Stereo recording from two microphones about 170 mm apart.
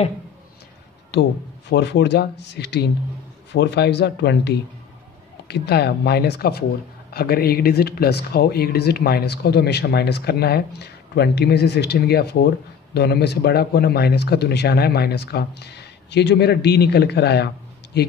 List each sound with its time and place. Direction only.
1.1 s speech: 90° left